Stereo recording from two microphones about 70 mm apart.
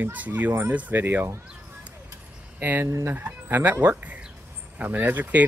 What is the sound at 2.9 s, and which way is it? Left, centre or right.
Speech, right.